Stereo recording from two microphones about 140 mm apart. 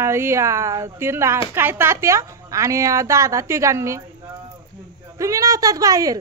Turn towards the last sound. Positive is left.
turn(degrees=-25)  # may be behind; listen again after turning